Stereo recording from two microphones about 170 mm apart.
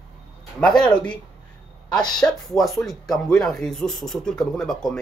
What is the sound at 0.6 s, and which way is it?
Speech, 5° left (ahead or behind).